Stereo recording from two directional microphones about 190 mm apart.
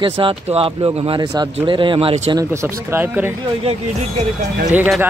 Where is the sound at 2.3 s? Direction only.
15° right (ahead or behind).